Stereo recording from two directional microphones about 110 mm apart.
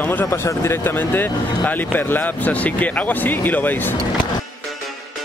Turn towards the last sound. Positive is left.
turn(degrees=15)  # may be behind; listen again after turning